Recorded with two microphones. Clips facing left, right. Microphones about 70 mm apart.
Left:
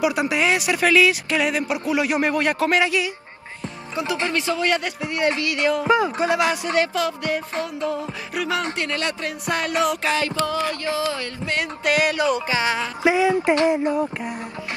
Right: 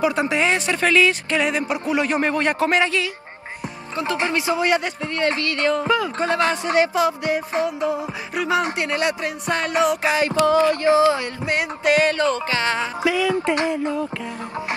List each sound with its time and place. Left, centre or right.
0.0 s speech: centre
4.2 s speech: centre
5.0 s speech: centre
6.7 s speech: centre
9.5 s music: centre
10.0 s a sound: right
11.9 s speech: centre
13.0 s music: left